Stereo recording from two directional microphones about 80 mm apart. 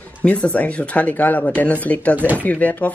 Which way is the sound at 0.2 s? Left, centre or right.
Centre.